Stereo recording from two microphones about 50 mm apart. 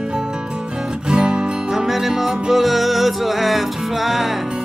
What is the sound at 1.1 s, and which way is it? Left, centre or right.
Music, centre.